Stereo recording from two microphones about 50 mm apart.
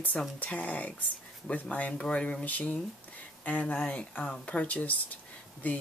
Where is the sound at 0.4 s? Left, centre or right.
Left.